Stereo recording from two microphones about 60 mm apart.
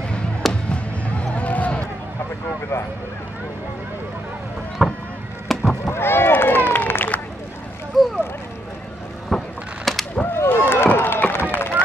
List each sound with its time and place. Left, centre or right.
0.5 s basketball bounce: centre
2.7 s speech: left
4.8 s boat: centre
5.5 s a sound: centre
5.9 s run: left
8.0 s boat: centre
9.3 s a sound: centre
9.9 s skateboard: centre
10.3 s a sound: left